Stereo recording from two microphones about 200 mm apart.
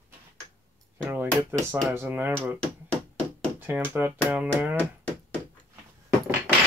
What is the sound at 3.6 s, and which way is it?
Speech, 10° right (ahead or behind).